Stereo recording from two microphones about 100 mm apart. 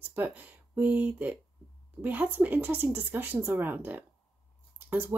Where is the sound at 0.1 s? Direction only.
15° right (ahead or behind).